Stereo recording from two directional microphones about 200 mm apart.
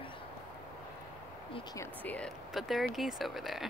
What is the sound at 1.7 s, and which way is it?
Speech, 5° left (ahead or behind).